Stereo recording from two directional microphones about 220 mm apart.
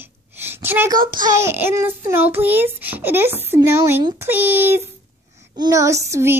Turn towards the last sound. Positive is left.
turn(degrees=-10)  # may be behind; listen again after turning